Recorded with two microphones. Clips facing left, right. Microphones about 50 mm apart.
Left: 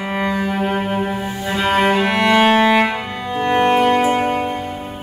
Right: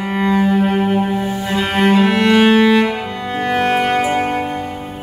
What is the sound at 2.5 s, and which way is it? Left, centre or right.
Music, centre.